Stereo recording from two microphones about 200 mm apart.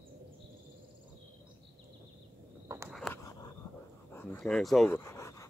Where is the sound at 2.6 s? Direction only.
15° right (ahead or behind).